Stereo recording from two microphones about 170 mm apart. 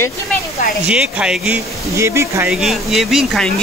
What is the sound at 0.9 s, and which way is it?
Speech, 5° right (ahead or behind).